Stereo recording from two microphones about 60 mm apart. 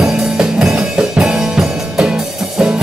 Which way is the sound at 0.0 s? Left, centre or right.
Centre.